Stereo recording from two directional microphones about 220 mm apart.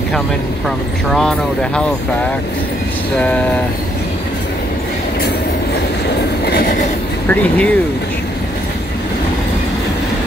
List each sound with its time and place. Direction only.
1.1 s speech: 5° left (ahead or behind)
6.4 s train: 45° left (ahead or behind)
7.2 s speech: 5° left (ahead or behind)